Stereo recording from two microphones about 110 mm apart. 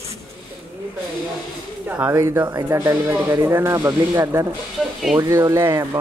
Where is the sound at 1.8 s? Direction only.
20° right (ahead or behind).